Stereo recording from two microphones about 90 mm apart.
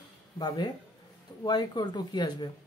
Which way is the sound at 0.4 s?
55° left (ahead or behind).